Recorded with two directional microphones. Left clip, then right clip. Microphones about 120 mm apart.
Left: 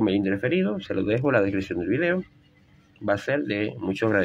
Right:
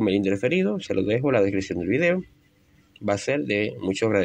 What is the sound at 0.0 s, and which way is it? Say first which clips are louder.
Speech: right 1 dB; 55° right (ahead or behind).